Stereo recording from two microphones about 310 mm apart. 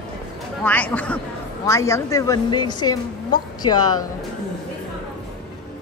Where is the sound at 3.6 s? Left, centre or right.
Left.